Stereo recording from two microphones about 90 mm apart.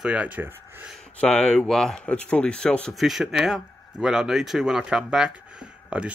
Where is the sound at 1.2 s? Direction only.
10° left (ahead or behind).